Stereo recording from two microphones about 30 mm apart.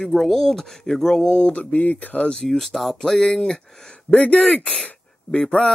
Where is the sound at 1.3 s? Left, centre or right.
Left.